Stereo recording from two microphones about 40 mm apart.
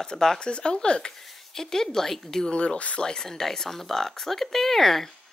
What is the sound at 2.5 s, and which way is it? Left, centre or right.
Speech, left.